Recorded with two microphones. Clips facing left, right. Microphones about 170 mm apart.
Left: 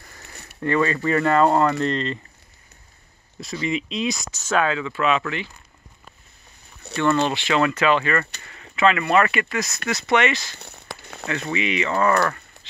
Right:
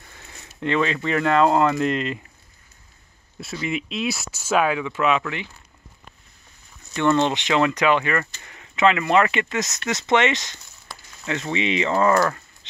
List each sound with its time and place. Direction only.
0.3 s a sound: 65° left (ahead or behind)
0.6 s speech: 10° right (ahead or behind)
3.3 s speech: 5° right (ahead or behind)
7.0 s speech: 20° right (ahead or behind)
10.6 s a sound: 60° left (ahead or behind)
11.2 s speech: 25° right (ahead or behind)